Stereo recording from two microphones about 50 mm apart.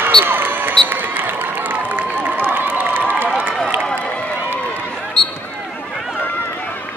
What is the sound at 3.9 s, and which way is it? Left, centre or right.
Run, left.